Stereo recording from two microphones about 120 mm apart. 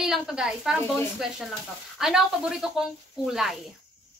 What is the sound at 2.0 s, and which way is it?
A woman's voice, 5° right (ahead or behind).